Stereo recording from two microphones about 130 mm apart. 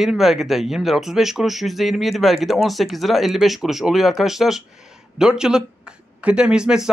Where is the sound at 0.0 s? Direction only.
Centre (ahead or behind).